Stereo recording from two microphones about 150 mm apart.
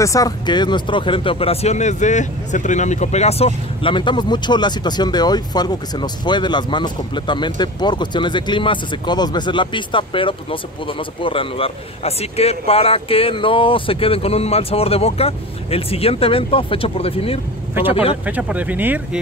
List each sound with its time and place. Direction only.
0.0 s speech: 25° left (ahead or behind); by 17.4 s 40° left (ahead or behind)
18.2 s speech: 10° right (ahead or behind)